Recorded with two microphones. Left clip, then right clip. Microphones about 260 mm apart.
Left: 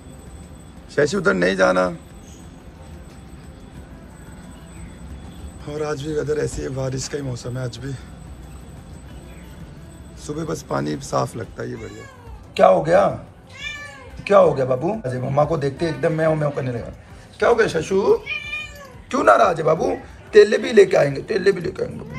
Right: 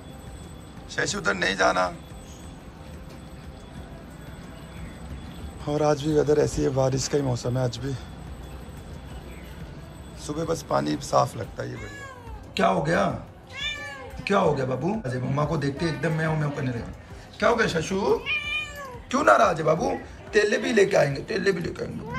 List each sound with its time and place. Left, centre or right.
0.9 s a man's voice: centre
5.7 s a man's voice: centre
10.2 s a man's voice: centre
14.2 s a man's voice: centre
18.2 s cat: right
19.1 s a man's voice: centre